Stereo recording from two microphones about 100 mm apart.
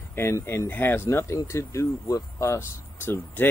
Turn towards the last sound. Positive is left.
turn(degrees=20)  # may be behind; listen again after turning